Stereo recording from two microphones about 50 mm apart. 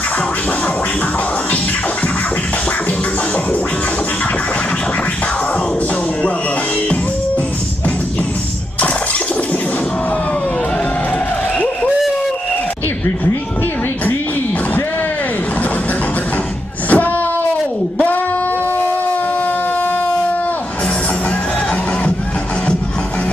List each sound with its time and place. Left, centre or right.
16.9 s wail: left